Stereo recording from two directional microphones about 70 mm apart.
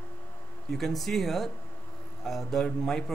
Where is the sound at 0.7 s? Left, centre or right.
Centre.